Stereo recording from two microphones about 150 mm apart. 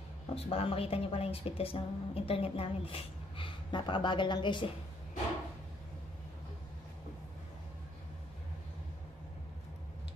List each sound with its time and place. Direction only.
0.3 s a woman's voice: 40° left (ahead or behind)